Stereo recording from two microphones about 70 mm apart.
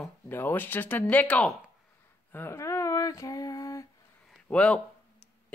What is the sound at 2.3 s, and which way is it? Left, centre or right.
Speech, left.